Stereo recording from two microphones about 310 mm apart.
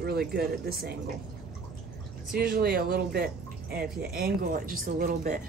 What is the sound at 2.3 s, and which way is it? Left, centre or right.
Speech, right.